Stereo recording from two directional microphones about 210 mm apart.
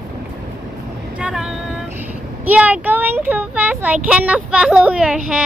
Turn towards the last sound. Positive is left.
turn(degrees=-5)  # may be behind; listen again after turning